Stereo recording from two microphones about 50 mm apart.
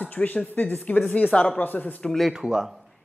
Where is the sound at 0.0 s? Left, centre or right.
Left.